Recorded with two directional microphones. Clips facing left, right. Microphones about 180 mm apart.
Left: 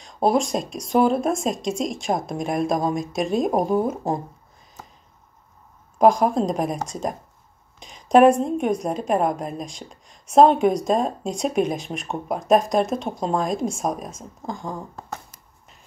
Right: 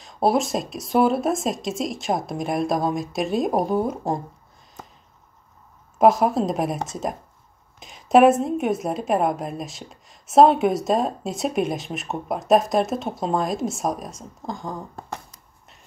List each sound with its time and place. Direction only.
0.0 s a woman's voice: centre (ahead or behind)
5.9 s a woman's voice: 5° right (ahead or behind)